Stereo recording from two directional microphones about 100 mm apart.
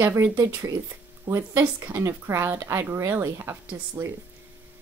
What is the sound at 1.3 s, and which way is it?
Speech, 25° right (ahead or behind).